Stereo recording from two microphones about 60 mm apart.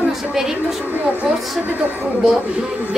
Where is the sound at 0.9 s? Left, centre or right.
Right.